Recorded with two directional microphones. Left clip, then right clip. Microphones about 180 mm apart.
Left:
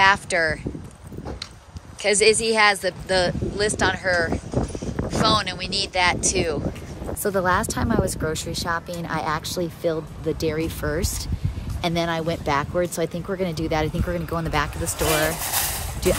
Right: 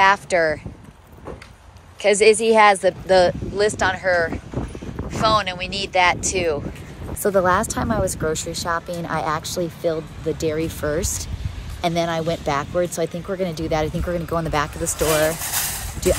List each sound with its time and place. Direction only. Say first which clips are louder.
0.0 s speech: right 2 dB; 10° left (ahead or behind)
2.0 s speech: right 3 dB; 5° left (ahead or behind)
15.3 s speech: even; 50° left (ahead or behind)